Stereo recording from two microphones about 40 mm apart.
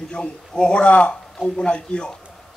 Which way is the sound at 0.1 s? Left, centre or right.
Left.